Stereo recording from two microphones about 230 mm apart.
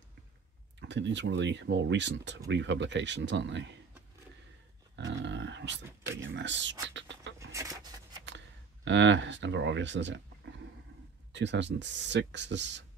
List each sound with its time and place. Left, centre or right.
0.7 s speech: right
4.9 s dog: right
6.3 s speech: right
7.3 s a sound: centre
8.8 s speech: right